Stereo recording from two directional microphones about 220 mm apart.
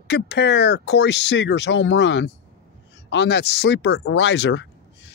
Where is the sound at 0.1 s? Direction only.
50° left (ahead or behind).